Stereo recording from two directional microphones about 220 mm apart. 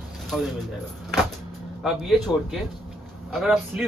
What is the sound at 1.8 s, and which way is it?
Speech, centre (ahead or behind).